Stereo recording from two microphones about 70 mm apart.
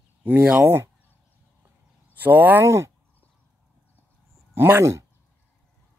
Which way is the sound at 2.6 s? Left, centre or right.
Right.